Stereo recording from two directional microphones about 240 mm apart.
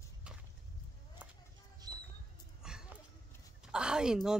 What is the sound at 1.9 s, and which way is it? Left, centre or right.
Rodents, centre.